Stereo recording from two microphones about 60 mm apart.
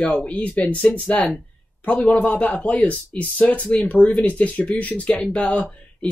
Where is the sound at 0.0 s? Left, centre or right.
Centre.